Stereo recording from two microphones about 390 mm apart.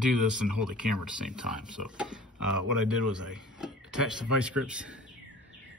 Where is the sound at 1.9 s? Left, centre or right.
Centre.